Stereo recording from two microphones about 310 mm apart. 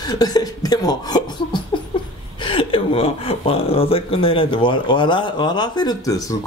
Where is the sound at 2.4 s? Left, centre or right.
Centre.